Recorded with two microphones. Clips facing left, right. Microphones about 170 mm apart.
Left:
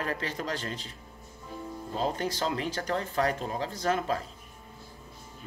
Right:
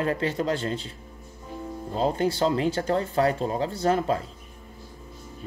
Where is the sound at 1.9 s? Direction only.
35° right (ahead or behind).